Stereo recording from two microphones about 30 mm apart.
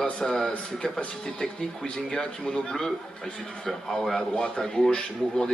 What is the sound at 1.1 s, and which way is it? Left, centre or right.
A man's voice, left.